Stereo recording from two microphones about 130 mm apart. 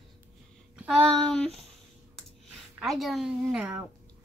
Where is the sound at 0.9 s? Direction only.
5° left (ahead or behind).